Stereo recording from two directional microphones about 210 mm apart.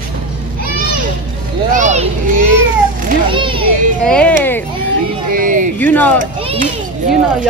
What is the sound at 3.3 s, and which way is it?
Children playing, 25° right (ahead or behind).